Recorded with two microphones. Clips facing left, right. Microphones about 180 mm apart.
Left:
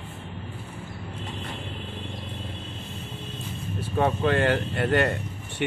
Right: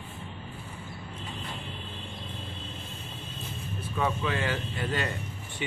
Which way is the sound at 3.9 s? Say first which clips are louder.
Left 7 dB; 55° left (ahead or behind).